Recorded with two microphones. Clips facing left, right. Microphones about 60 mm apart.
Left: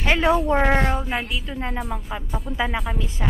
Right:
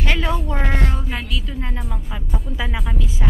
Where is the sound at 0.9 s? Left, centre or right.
Centre.